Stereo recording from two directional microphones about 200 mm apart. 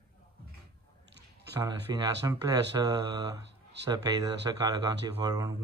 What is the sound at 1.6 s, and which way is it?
Speech, 20° right (ahead or behind).